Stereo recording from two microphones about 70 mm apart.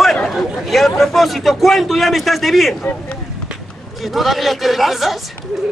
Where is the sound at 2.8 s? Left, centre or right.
Left.